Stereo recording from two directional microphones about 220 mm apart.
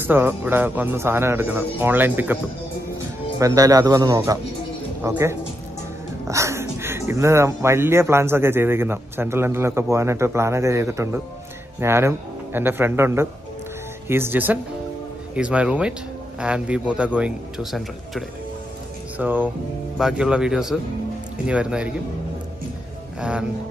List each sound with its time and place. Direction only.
0.0 s speech: 10° right (ahead or behind)
3.3 s speech: 15° right (ahead or behind)